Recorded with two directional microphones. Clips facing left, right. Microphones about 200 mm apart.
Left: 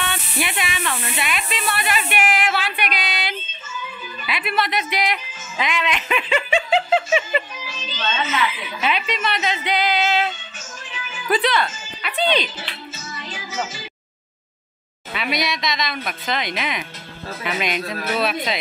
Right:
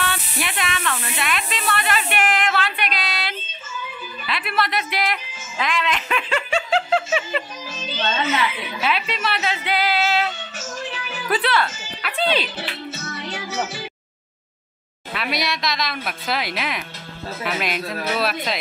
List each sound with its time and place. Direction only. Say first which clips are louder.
0.0 s speech: left 1 dB; centre (ahead or behind)
4.3 s speech: left 1 dB; centre (ahead or behind)
7.6 s music: right 3 dB; 50° right (ahead or behind)
8.8 s speech: left 1 dB; centre (ahead or behind)
10.6 s music: right 7 dB; 70° right (ahead or behind)
11.2 s speech: left 1 dB; centre (ahead or behind)
12.5 s music: right 5 dB; 65° right (ahead or behind)
15.1 s speech: left 1 dB; centre (ahead or behind)